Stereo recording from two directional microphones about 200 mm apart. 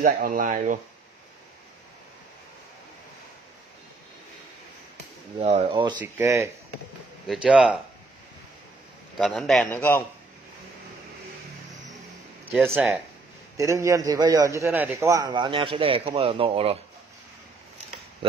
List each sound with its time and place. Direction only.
0.0 s speech: 45° right (ahead or behind)
5.6 s a man's voice: 25° right (ahead or behind)
6.0 s a man's voice: 10° right (ahead or behind)
9.2 s a man's voice: centre (ahead or behind)
12.5 s a man's voice: centre (ahead or behind)
13.6 s a man's voice: 15° right (ahead or behind)